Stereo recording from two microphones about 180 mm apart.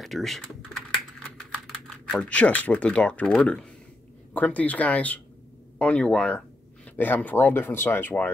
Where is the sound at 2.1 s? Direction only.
5° left (ahead or behind).